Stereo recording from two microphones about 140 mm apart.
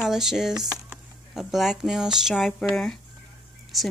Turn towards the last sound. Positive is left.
turn(degrees=0)  # may be behind; listen again after turning